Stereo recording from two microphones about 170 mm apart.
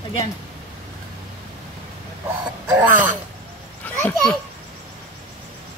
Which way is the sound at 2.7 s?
10° right (ahead or behind).